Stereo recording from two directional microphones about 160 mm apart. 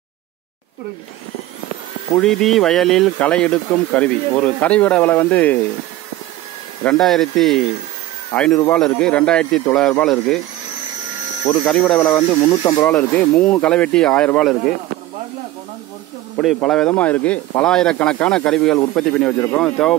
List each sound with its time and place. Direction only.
2.1 s speech: centre (ahead or behind)
6.8 s speech: 5° left (ahead or behind)
11.6 s speech: 5° left (ahead or behind)
12.0 s speech: 15° left (ahead or behind)
12.8 s speech: 10° left (ahead or behind)
16.6 s speech: 5° left (ahead or behind)